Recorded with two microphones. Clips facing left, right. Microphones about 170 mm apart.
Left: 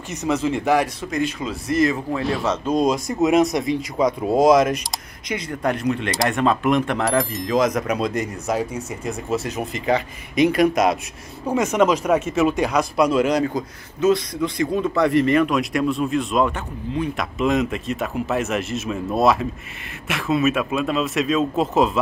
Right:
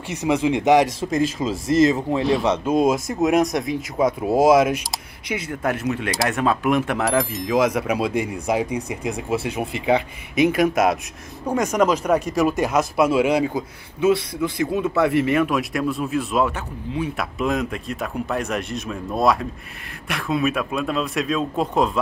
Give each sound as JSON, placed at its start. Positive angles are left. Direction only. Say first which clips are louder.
{"t": 0.1, "sound": "speech", "louder": "right 2 dB", "side_deg": -10}
{"t": 2.4, "sound": "a man's voice", "louder": "right 1 dB", "side_deg": -10}